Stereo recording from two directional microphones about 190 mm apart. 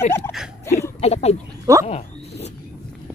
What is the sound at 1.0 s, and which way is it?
Speech, 35° left (ahead or behind).